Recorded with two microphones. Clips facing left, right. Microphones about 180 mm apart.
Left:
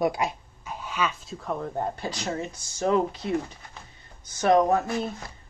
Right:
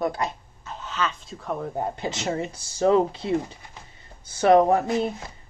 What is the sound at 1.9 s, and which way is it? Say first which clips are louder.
Speech: right 3 dB; 20° right (ahead or behind).